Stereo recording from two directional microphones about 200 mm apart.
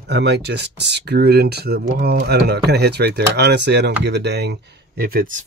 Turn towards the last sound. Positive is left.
turn(degrees=-45)  # may be behind; listen again after turning